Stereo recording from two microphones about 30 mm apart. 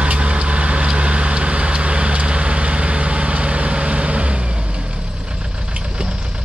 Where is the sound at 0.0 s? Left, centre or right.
Right.